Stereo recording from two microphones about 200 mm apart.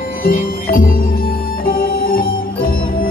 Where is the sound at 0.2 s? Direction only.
45° left (ahead or behind).